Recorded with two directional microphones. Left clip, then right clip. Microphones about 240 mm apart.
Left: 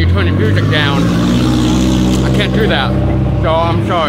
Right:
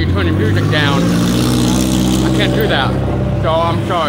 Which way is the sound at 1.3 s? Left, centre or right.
Right.